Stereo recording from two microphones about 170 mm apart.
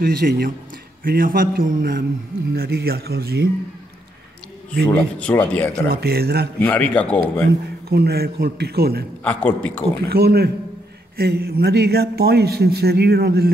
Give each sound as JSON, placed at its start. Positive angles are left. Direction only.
{"t": 0.0, "sound": "a man's voice", "side_deg": -65}
{"t": 4.9, "sound": "a man's voice", "side_deg": 10}
{"t": 5.9, "sound": "a man's voice", "side_deg": -65}
{"t": 6.6, "sound": "a man's voice", "side_deg": 10}
{"t": 7.9, "sound": "a man's voice", "side_deg": -70}
{"t": 9.2, "sound": "a man's voice", "side_deg": 10}
{"t": 10.0, "sound": "a man's voice", "side_deg": -65}